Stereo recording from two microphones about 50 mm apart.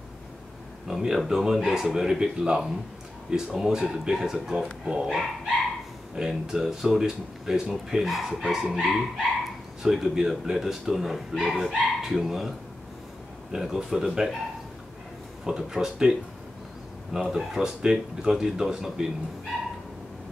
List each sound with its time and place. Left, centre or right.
0.8 s speech: centre
6.1 s speech: centre
15.4 s speech: centre